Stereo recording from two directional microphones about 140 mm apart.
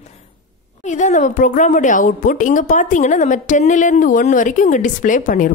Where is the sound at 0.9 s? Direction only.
60° left (ahead or behind).